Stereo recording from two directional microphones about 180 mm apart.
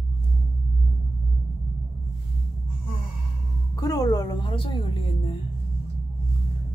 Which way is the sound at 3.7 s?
20° left (ahead or behind).